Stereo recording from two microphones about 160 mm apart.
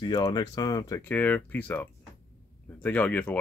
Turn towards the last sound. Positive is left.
turn(degrees=10)  # may be behind; listen again after turning